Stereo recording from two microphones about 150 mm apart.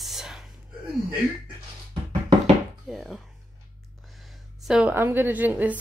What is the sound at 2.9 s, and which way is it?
Speech, centre (ahead or behind).